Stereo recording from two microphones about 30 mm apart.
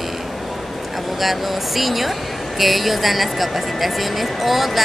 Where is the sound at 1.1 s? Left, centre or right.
Centre.